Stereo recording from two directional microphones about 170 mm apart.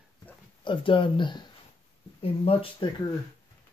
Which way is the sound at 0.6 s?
30° left (ahead or behind).